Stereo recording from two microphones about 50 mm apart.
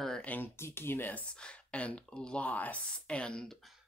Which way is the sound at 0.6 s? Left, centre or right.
Left.